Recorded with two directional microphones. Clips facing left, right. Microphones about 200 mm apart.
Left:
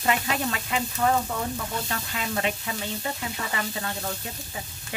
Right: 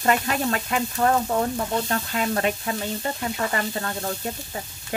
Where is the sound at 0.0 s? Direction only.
50° right (ahead or behind).